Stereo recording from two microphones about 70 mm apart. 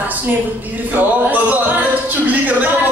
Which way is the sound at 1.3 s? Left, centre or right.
Right.